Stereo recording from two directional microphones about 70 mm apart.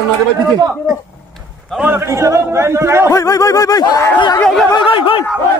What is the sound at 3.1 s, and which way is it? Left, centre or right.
Snicker, left.